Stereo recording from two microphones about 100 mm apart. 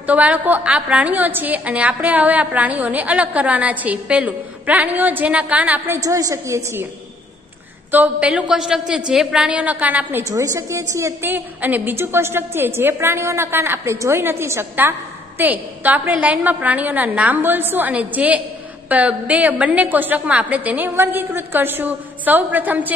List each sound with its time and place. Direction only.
0.0 s a woman's voice: 15° right (ahead or behind)
5.9 s a woman's voice: 35° right (ahead or behind)
7.9 s a woman's voice: 15° right (ahead or behind)
10.2 s a woman's voice: 30° right (ahead or behind)